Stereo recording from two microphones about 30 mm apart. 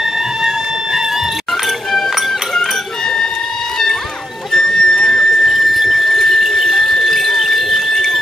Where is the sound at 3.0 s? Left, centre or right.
Centre.